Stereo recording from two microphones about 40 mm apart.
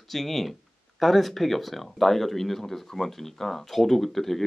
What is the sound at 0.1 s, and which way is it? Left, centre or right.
Speech, centre.